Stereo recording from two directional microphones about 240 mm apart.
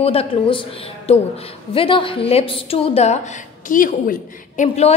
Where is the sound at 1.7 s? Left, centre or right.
Left.